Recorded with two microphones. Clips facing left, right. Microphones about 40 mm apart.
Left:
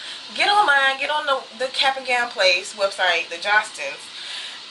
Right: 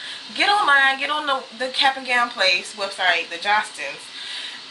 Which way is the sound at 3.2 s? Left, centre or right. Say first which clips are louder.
Right 1 dB; right.